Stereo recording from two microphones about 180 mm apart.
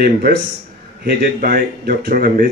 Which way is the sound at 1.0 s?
55° right (ahead or behind).